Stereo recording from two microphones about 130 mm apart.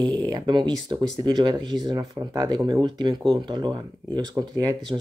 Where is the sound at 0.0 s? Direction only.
35° right (ahead or behind).